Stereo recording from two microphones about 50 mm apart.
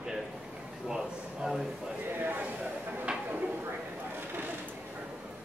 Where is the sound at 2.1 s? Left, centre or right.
Right.